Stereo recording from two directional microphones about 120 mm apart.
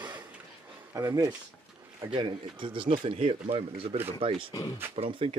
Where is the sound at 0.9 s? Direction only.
25° right (ahead or behind).